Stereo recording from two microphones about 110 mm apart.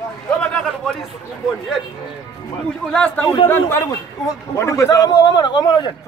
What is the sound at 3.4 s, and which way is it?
A man's voice, 25° left (ahead or behind).